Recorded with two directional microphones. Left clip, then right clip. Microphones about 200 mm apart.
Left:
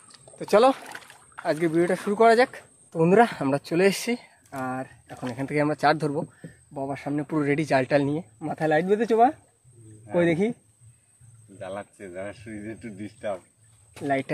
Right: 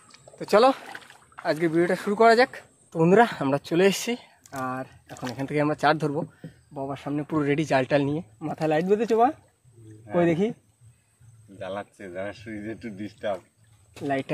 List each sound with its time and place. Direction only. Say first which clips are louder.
0.4 s speech: even; 5° right (ahead or behind)
0.8 s rowboat: even; 10° left (ahead or behind)
1.4 s speech: even; 5° right (ahead or behind)
11.5 s speech: right 2 dB; 45° right (ahead or behind)
14.0 s speech: even; 10° left (ahead or behind)